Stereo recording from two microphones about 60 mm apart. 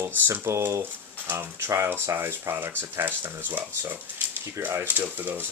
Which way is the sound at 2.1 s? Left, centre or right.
Right.